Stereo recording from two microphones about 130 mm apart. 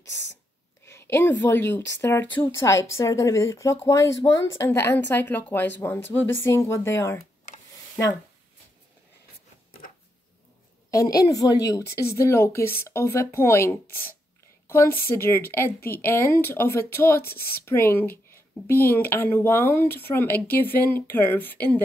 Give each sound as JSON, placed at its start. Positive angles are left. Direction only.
{"t": 0.8, "sound": "a woman's voice", "side_deg": 20}
{"t": 10.9, "sound": "a woman's voice", "side_deg": 25}